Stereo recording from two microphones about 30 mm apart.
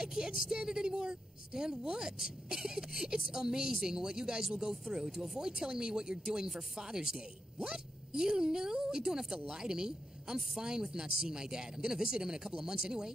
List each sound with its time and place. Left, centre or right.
0.0 s a woman's voice: right